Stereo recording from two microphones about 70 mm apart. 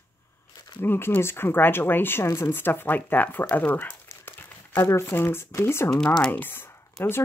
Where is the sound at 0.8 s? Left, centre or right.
Left.